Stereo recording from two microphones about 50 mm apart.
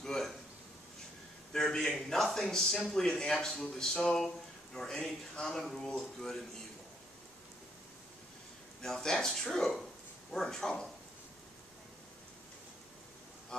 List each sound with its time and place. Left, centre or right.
0.0 s a sound: centre
1.5 s a man's voice: centre
8.8 s speech: centre
13.5 s vehicle: centre